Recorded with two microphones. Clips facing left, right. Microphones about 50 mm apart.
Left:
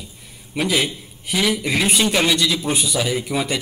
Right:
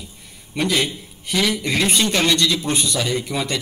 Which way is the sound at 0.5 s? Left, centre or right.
Centre.